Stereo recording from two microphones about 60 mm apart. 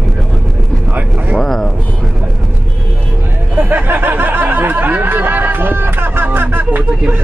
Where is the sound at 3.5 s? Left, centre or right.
Right.